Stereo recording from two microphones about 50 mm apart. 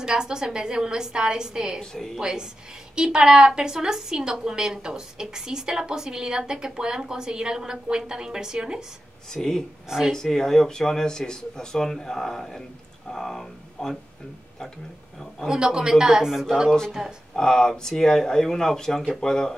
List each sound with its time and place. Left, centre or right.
0.0 s a woman's voice: centre
1.8 s speech: centre
2.1 s a woman's voice: centre
9.3 s speech: centre
9.8 s a woman's voice: centre
10.1 s speech: centre
15.4 s a woman's voice: centre
17.4 s speech: centre